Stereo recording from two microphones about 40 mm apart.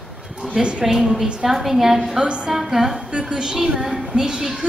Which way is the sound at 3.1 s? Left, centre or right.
Right.